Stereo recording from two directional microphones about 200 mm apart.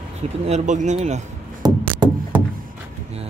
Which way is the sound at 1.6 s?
20° right (ahead or behind).